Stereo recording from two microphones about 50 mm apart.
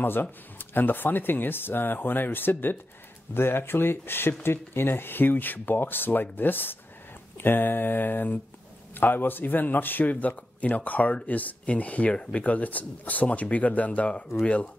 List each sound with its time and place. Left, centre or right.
0.0 s a man's voice: left; by 12.4 s centre
12.4 s a man's voice: left